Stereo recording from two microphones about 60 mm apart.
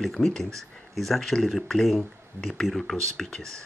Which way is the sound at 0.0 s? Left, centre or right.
Centre.